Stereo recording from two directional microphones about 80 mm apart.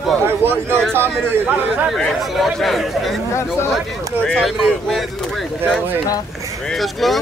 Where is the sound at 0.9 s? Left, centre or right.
Right.